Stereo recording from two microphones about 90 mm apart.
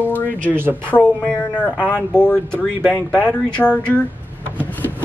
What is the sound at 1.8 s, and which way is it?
Speech, 20° right (ahead or behind).